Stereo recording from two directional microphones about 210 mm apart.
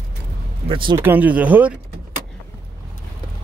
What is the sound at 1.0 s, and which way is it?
Speech, 10° right (ahead or behind).